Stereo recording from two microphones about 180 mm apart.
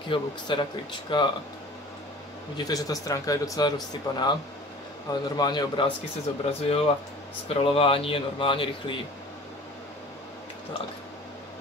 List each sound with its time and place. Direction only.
0.1 s speech: 25° left (ahead or behind)
2.5 s speech: 20° left (ahead or behind)